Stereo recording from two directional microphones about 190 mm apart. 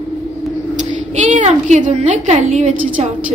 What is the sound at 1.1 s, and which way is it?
A woman's voice, 40° right (ahead or behind).